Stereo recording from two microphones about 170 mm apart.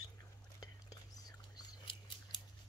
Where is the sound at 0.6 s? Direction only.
20° left (ahead or behind).